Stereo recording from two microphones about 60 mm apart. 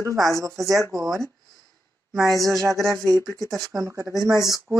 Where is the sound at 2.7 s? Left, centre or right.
Right.